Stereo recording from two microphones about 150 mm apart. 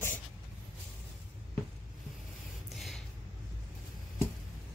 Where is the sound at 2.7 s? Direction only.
Centre (ahead or behind).